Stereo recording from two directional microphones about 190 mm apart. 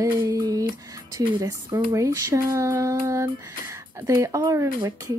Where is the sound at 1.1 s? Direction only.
20° right (ahead or behind).